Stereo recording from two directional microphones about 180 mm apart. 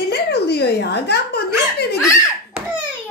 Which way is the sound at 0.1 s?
65° left (ahead or behind).